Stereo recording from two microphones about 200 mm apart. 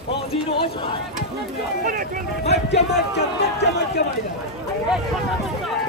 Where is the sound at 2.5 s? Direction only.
55° left (ahead or behind).